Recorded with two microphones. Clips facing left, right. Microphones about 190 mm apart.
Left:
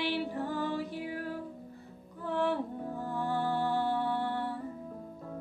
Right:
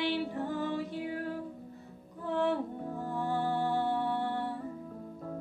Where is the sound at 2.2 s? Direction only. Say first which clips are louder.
Right 1 dB; 25° right (ahead or behind).